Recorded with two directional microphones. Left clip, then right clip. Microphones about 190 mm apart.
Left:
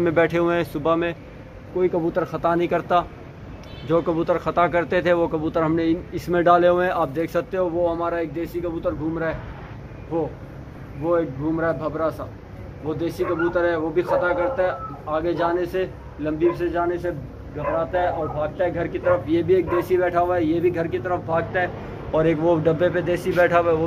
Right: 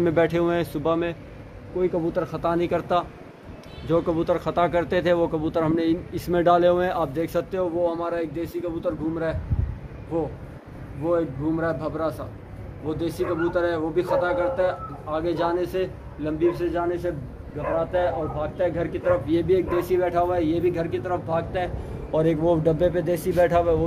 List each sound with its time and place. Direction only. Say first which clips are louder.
0.0 s speech: left 2 dB; 15° right (ahead or behind)
1.8 s speech: left 3 dB; centre (ahead or behind)
11.1 s speech: left 2 dB; 5° right (ahead or behind)
22.1 s a man's voice: left 2 dB; 25° right (ahead or behind)